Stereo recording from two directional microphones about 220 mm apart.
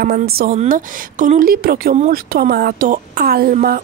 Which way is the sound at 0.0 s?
45° right (ahead or behind).